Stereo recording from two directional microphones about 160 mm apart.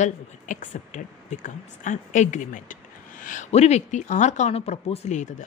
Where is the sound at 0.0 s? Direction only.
50° left (ahead or behind).